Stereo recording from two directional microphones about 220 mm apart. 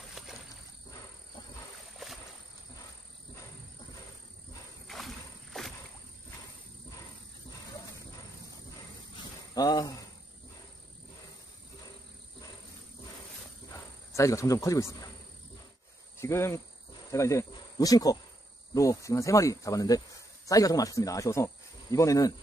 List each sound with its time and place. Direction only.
0.2 s wild animals: centre (ahead or behind)
4.8 s a sound: centre (ahead or behind)
9.5 s speech: 20° left (ahead or behind)
13.7 s speech: 15° left (ahead or behind)
16.2 s speech: 10° left (ahead or behind)